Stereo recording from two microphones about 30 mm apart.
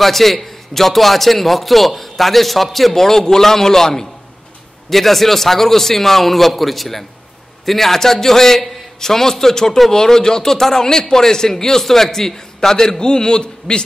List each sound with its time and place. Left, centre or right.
0.0 s a man's voice: centre; by 13.8 s left